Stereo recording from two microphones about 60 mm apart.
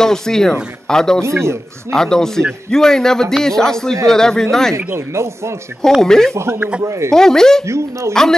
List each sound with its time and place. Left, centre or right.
0.0 s a man's voice: centre
1.2 s speech: right
1.9 s a man's voice: centre
4.9 s speech: right
5.9 s a man's voice: centre
6.3 s speech: right
7.1 s a man's voice: centre
7.6 s speech: right
8.1 s a man's voice: centre